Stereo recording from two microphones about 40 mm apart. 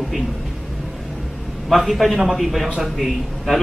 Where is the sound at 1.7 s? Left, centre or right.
Centre.